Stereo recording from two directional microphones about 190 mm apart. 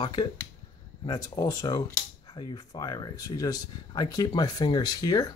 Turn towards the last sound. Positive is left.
turn(degrees=20)  # may be behind; listen again after turning